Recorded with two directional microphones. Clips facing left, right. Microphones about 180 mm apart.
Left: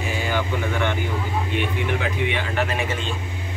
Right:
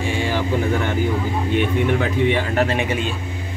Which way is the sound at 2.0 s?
45° right (ahead or behind).